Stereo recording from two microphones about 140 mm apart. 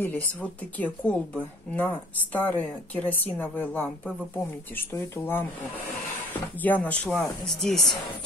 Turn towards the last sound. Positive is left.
turn(degrees=5)  # may be behind; listen again after turning